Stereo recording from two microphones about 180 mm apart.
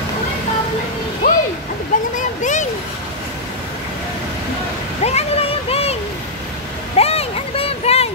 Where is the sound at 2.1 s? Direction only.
45° left (ahead or behind).